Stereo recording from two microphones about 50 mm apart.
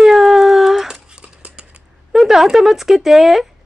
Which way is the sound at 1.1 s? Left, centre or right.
Centre.